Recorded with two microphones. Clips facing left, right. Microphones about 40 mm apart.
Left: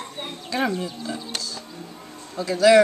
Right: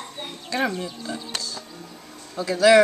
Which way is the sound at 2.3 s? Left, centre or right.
Centre.